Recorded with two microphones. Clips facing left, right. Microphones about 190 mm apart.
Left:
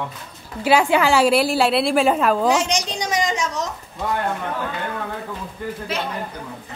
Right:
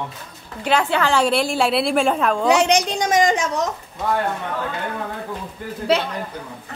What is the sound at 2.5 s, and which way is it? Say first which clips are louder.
Speech: right 4 dB; 60° right (ahead or behind).